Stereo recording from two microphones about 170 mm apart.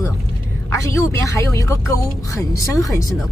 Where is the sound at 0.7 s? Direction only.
15° left (ahead or behind).